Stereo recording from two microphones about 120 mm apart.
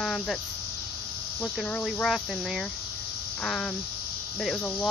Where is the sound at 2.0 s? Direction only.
Centre (ahead or behind).